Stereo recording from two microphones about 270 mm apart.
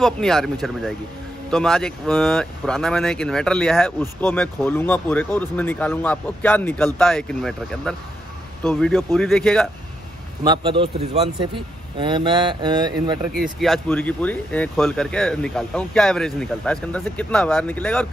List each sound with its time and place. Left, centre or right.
0.0 s speech: centre
10.4 s a man's voice: centre
13.4 s speech: centre